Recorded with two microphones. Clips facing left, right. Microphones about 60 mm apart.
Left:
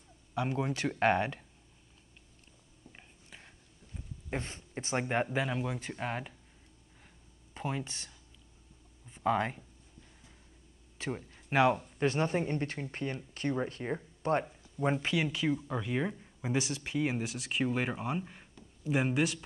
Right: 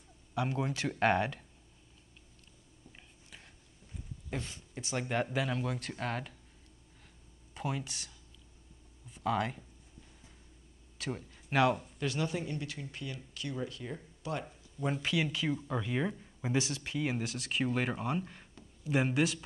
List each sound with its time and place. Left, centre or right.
0.4 s speech: centre
2.9 s a sound: centre
4.3 s speech: left; by 6.3 s centre
7.5 s speech: centre
9.1 s speech: centre
11.0 s speech: centre
12.0 s speech: left
14.8 s speech: left
15.2 s speech: centre